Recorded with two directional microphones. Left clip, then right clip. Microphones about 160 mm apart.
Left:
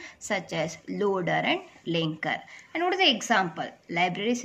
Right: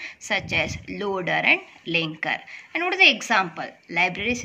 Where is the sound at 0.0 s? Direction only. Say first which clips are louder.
Right 5 dB; 30° left (ahead or behind).